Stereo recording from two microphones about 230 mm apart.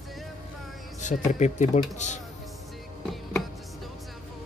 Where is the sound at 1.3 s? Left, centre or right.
Left.